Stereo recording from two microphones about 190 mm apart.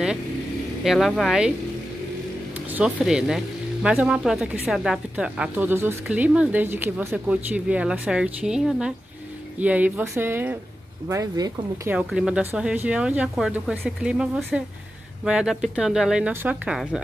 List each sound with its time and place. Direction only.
0.8 s speech: centre (ahead or behind)
2.7 s speech: 5° right (ahead or behind)
11.9 s speech: 5° right (ahead or behind)